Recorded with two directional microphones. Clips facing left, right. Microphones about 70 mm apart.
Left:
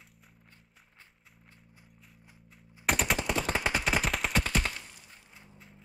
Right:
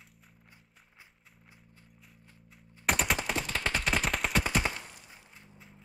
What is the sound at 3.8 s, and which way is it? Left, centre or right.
Gunshot, centre.